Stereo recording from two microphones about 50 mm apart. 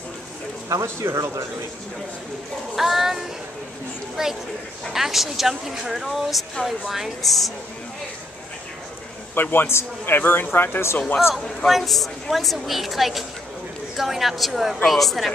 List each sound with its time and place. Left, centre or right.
0.7 s speech: right
2.7 s a woman's voice: centre
9.3 s a man's voice: left
10.1 s a man's voice: left
11.4 s a woman's voice: centre